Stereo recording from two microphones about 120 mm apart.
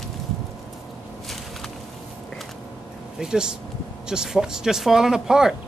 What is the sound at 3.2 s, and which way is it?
A man's voice, 5° right (ahead or behind).